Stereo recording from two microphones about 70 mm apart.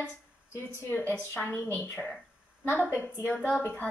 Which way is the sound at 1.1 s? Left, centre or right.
Left.